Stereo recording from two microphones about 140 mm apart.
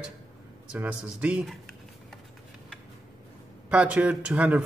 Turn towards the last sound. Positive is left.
turn(degrees=-10)  # may be behind; listen again after turning